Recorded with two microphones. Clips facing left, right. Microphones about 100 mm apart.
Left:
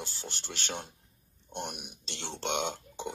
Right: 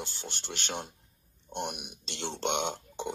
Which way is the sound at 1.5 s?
50° right (ahead or behind).